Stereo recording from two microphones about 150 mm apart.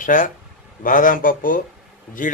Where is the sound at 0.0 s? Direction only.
60° left (ahead or behind).